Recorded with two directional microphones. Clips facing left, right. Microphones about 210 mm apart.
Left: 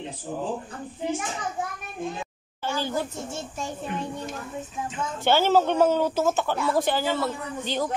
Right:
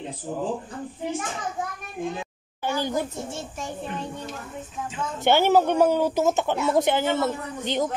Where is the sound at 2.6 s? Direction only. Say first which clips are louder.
Right 2 dB; 15° right (ahead or behind).